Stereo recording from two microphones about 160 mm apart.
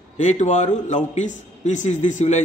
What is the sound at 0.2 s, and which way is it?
A man's voice, 45° left (ahead or behind).